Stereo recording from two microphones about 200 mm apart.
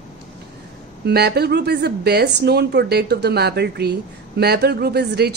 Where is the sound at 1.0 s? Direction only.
55° right (ahead or behind).